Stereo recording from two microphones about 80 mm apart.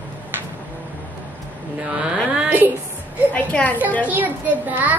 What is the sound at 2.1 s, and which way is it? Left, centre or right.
Speech, centre.